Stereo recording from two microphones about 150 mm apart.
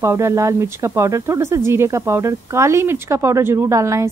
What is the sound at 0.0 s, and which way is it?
Speech, 20° right (ahead or behind).